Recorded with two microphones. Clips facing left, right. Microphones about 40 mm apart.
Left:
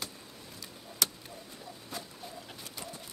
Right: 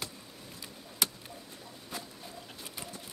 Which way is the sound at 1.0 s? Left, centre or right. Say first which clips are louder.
Even; centre.